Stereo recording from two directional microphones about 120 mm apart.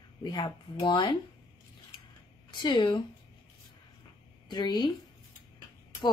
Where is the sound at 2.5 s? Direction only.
40° left (ahead or behind).